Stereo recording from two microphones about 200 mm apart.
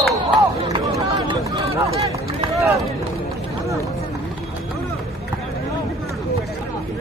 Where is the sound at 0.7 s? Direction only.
20° right (ahead or behind).